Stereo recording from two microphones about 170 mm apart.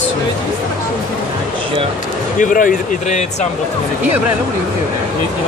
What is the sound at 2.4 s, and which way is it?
Speech, 50° left (ahead or behind).